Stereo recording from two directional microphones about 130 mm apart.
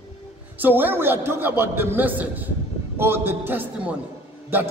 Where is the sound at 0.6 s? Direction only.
15° right (ahead or behind).